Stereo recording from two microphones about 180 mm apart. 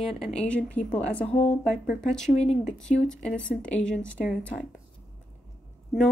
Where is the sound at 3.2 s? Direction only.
5° left (ahead or behind).